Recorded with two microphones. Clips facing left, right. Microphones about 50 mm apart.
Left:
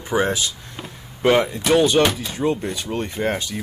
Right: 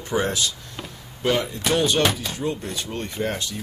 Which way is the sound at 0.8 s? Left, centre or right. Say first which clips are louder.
Left 1 dB; centre.